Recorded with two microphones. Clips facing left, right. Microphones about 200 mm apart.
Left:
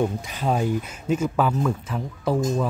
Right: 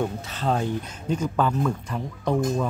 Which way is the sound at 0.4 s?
10° left (ahead or behind).